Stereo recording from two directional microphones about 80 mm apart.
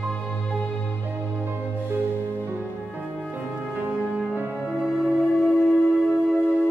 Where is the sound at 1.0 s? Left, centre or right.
Right.